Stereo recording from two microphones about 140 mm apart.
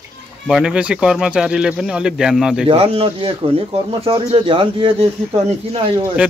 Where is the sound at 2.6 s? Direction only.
45° right (ahead or behind).